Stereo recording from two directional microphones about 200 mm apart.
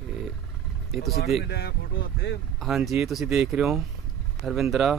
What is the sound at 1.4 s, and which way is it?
Speech, 55° left (ahead or behind).